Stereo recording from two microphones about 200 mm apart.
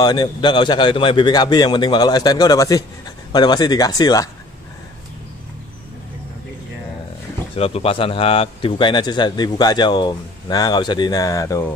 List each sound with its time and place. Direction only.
0.0 s speech: 20° left (ahead or behind)
7.5 s speech: 30° left (ahead or behind)